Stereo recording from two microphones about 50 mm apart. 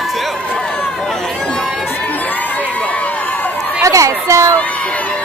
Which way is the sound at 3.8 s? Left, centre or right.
Right.